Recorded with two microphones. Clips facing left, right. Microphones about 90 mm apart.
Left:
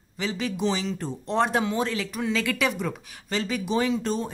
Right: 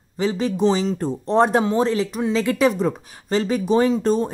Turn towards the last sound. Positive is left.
turn(degrees=-40)  # may be behind; listen again after turning